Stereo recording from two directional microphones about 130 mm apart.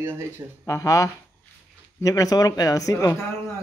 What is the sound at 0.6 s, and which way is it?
A man's voice, 25° left (ahead or behind).